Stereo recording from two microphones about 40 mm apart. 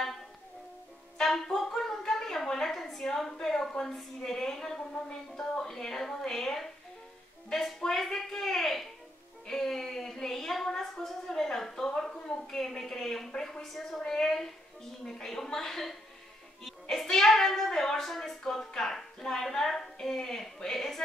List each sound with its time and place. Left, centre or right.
1.2 s music: centre
1.8 s a sound: centre
3.3 s speech: centre